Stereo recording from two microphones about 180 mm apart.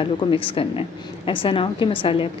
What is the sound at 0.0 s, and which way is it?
A woman's voice, 30° left (ahead or behind).